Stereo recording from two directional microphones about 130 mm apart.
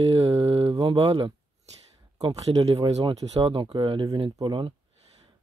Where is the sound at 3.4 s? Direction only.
40° right (ahead or behind).